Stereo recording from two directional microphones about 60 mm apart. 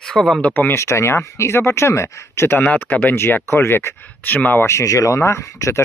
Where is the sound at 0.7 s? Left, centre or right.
Left.